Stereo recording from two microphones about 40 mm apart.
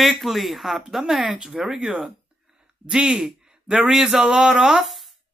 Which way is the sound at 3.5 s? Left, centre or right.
Right.